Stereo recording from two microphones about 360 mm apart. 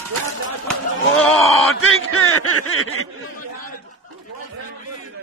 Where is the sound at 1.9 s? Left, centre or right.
Left.